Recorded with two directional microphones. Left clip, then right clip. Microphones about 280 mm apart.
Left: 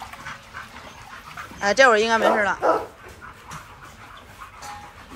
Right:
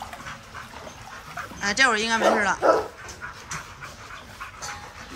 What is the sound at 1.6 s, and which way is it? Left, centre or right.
Speech, centre.